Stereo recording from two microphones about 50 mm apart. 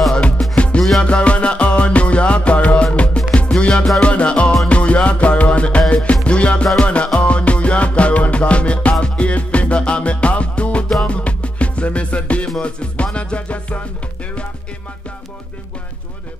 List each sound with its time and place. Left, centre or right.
0.6 s music: left